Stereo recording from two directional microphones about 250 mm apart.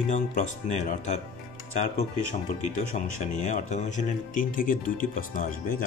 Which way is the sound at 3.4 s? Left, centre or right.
Left.